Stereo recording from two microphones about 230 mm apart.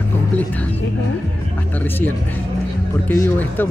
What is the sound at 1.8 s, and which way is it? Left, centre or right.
Speech, centre.